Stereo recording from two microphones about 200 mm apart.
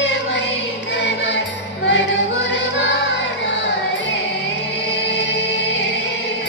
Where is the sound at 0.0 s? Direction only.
65° left (ahead or behind).